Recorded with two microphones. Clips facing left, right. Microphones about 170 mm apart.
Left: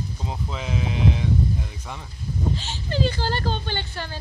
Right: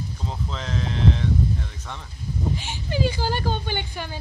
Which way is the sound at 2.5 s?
10° right (ahead or behind).